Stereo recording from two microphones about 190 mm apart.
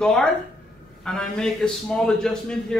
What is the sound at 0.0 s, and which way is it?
Speech, 5° left (ahead or behind).